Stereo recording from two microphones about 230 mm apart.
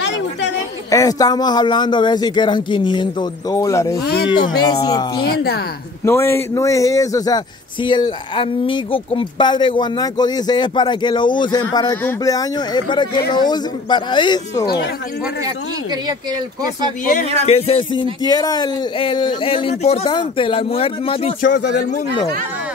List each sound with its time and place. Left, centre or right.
0.8 s speech: centre
4.0 s speech: left
4.6 s speech: centre
5.3 s speech: left
6.0 s speech: centre
17.0 s speech: left